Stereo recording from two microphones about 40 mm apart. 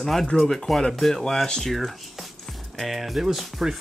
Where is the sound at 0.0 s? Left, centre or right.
Centre.